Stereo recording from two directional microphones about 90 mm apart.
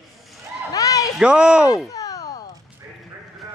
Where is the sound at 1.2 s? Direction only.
10° right (ahead or behind).